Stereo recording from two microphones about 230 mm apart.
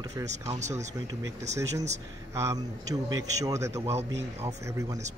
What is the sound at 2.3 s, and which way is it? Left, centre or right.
Speech, centre.